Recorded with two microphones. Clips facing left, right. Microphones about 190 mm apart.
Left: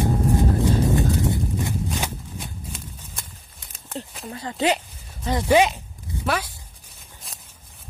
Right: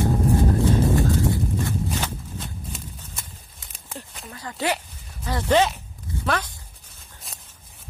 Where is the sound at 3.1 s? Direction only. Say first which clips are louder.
Even; centre (ahead or behind).